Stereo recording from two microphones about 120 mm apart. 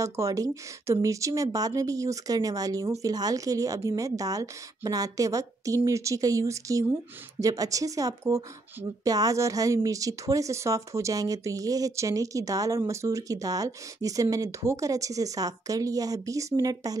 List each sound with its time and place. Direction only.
0.0 s a woman's voice: 25° right (ahead or behind)